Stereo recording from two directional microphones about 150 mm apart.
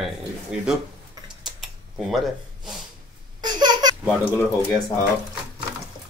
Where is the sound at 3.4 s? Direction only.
25° right (ahead or behind).